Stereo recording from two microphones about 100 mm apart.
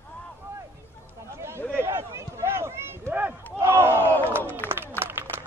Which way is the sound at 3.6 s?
25° right (ahead or behind).